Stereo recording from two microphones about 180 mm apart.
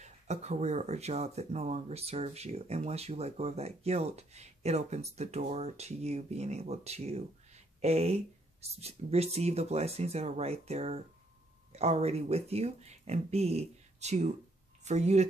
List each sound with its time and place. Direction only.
0.0 s speech: 40° right (ahead or behind)